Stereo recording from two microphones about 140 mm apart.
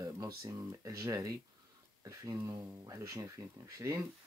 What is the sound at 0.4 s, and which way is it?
Speech, 25° right (ahead or behind).